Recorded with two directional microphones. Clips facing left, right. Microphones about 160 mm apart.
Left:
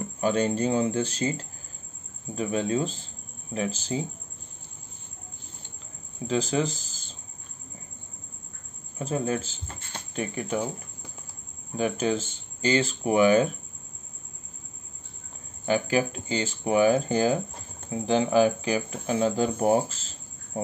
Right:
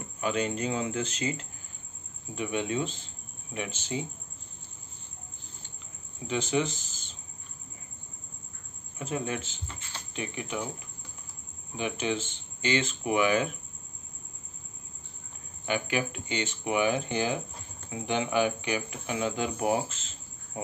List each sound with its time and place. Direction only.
0.2 s speech: 35° left (ahead or behind)
6.2 s speech: 35° left (ahead or behind)
8.9 s speech: 35° left (ahead or behind)
11.7 s speech: 40° left (ahead or behind)
15.6 s speech: 35° left (ahead or behind)